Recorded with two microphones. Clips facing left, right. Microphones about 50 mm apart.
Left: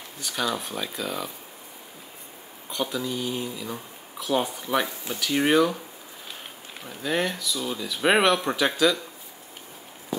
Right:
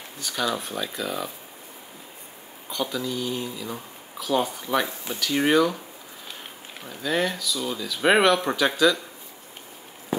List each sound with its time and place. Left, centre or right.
0.2 s speech: centre
2.7 s speech: centre
4.8 s speech: right
5.2 s speech: centre
7.1 s speech: centre